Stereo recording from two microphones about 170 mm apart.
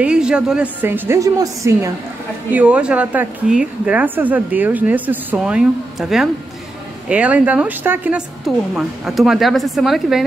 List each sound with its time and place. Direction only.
0.0 s a woman's voice: 5° right (ahead or behind)
2.5 s a woman's voice: 10° right (ahead or behind)